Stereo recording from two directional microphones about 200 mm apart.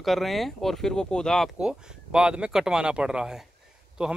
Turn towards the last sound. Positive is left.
turn(degrees=-5)  # may be behind; listen again after turning